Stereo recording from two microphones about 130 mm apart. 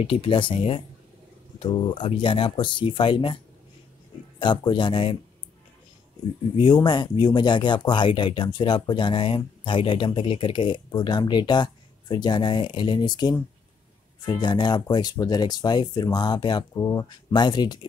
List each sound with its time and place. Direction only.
0.0 s speech: 45° left (ahead or behind)
4.4 s speech: 35° left (ahead or behind)
6.6 s speech: 35° left (ahead or behind)